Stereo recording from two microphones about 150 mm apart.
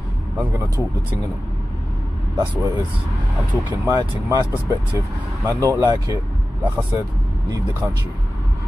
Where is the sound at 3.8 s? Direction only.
25° right (ahead or behind).